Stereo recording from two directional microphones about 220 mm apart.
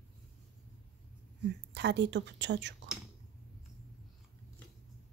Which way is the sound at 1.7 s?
50° right (ahead or behind).